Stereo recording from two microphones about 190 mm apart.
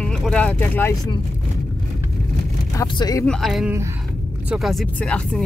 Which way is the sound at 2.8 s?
20° left (ahead or behind).